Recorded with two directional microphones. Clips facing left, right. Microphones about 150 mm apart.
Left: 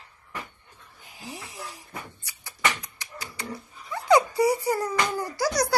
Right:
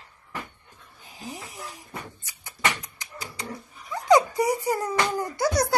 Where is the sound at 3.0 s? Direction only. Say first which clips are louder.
Right 1 dB; 20° right (ahead or behind).